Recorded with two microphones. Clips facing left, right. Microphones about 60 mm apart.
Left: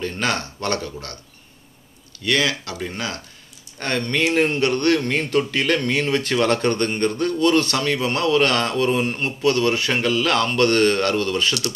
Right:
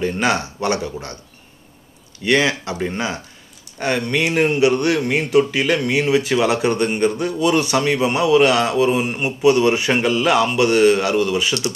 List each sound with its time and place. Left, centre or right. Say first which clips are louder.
0.0 s a man's voice: right 5 dB; centre
2.2 s a man's voice: right 4 dB; right